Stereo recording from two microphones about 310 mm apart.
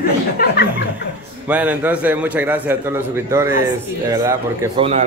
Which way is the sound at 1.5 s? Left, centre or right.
Centre.